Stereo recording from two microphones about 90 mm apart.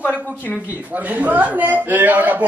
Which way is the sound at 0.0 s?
20° left (ahead or behind).